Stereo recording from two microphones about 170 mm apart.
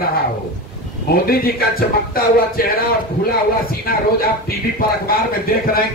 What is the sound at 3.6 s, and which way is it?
A man's voice, 60° left (ahead or behind).